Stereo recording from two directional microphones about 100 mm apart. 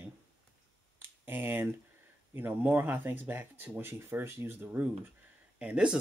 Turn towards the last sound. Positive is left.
turn(degrees=-10)  # may be behind; listen again after turning